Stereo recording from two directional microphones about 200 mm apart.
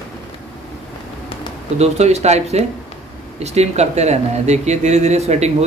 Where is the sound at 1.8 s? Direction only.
35° right (ahead or behind).